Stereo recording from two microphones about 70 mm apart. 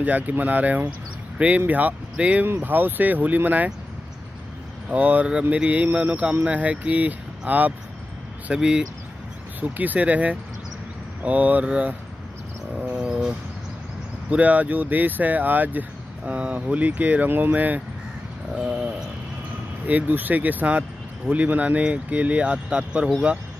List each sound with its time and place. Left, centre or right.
0.0 s speech: right
2.4 s speech: right
4.9 s speech: right
8.5 s a sound: centre
9.6 s speech: right
12.9 s a sound: centre
14.3 s speech: right
18.5 s a sound: centre
19.9 s speech: right